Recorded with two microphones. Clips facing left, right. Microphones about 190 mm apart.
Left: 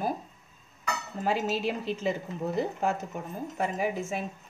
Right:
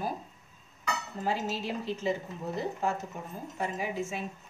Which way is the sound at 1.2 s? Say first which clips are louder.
Left 4 dB; 65° left (ahead or behind).